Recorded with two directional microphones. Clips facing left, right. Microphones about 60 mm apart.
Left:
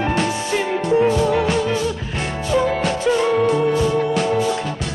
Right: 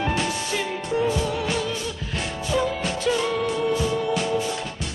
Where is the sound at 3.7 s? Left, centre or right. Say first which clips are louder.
Left 5 dB; left.